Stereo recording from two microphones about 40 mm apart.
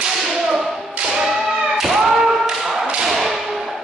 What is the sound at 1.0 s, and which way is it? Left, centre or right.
Thump, centre.